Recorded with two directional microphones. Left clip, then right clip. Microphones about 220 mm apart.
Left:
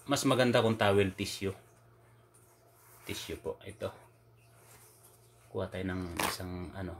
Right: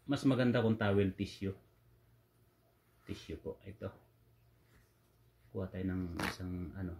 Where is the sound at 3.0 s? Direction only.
15° left (ahead or behind).